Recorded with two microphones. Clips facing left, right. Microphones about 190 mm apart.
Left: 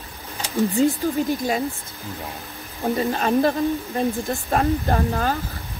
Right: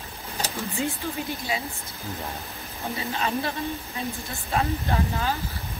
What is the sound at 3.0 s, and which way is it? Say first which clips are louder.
Speech: left 8 dB; 50° left (ahead or behind).